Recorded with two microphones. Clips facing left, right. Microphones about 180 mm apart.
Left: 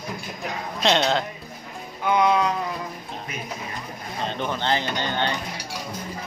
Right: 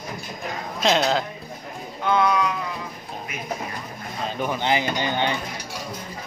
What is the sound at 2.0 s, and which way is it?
Music, 15° left (ahead or behind).